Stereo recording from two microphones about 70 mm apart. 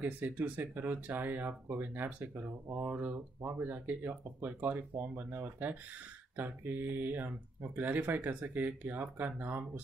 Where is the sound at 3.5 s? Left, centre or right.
Right.